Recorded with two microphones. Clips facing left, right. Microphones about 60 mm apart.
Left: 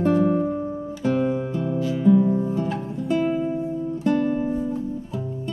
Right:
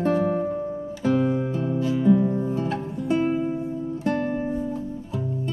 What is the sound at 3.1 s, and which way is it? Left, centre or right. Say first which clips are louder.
Music: even; centre.